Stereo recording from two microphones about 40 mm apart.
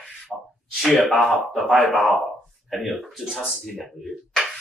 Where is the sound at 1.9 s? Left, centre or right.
Centre.